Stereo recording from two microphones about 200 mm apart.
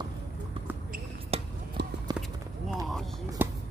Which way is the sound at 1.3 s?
30° right (ahead or behind).